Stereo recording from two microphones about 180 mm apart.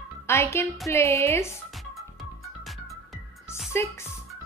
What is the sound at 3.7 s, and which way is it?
Speech, 15° left (ahead or behind).